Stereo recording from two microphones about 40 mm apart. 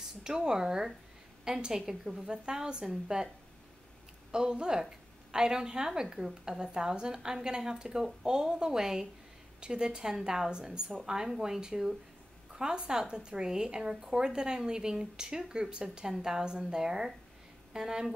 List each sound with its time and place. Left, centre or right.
0.2 s a woman's voice: centre